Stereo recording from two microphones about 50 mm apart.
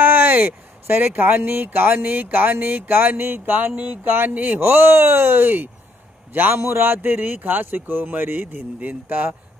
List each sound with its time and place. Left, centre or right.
0.0 s speech: right
4.6 s speech: right
6.5 s speech: right
8.7 s speech: right